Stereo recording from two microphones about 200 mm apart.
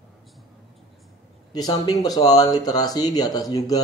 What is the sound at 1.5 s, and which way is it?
Speech, 20° left (ahead or behind).